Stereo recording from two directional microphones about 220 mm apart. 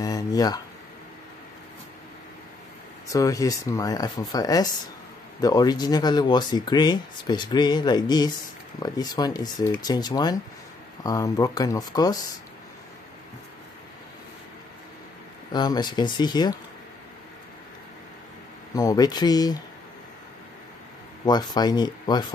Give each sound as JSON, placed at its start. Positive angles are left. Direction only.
{"t": 0.0, "sound": "a sound", "side_deg": 15}
{"t": 3.1, "sound": "speech", "side_deg": 15}
{"t": 15.5, "sound": "speech", "side_deg": 20}
{"t": 18.8, "sound": "speech", "side_deg": 15}
{"t": 21.3, "sound": "speech", "side_deg": 20}